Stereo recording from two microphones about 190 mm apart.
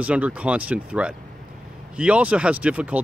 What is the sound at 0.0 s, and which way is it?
Speech, 5° right (ahead or behind).